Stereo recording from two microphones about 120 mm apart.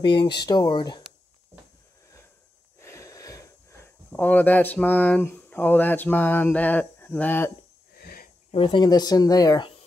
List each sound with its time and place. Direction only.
0.0 s speech: 45° left (ahead or behind)
2.8 s wheeze: 25° left (ahead or behind)
4.1 s speech: 15° left (ahead or behind)
8.5 s speech: 50° left (ahead or behind); by 9.7 s 30° left (ahead or behind)